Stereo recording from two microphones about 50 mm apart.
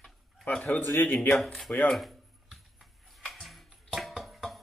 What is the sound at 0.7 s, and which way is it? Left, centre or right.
Speech, left.